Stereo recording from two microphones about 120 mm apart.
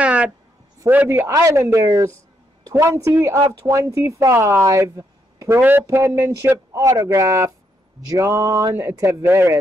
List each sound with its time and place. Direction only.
0.0 s a sound: 10° right (ahead or behind)
0.8 s speech: 20° right (ahead or behind)
8.5 s speech: 30° right (ahead or behind)
8.7 s speech: 20° right (ahead or behind)